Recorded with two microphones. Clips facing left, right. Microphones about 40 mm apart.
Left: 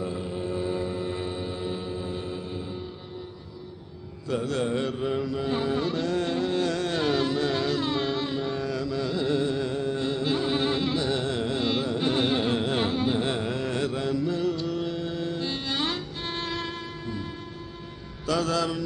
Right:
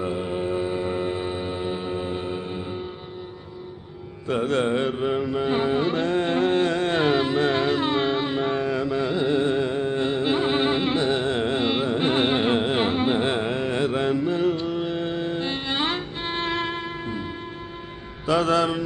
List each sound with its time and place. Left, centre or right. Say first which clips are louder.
0.0 s mantra: right 5 dB; right
4.3 s carnatic music: right 5 dB; right
13.9 s music: right 4 dB; right